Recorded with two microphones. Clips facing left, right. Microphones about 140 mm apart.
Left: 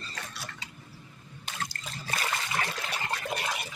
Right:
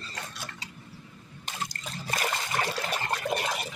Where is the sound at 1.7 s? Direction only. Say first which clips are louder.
Right 2 dB; 40° right (ahead or behind).